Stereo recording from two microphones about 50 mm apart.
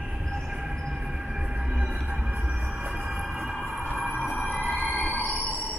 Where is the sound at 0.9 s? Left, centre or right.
Centre.